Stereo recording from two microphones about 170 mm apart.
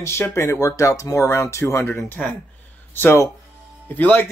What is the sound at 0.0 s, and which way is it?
Speech, 15° left (ahead or behind).